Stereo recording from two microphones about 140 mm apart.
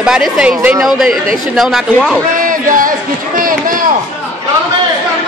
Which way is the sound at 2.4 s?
75° right (ahead or behind).